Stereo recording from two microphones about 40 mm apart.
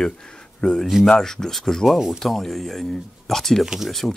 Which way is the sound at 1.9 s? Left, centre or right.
Centre.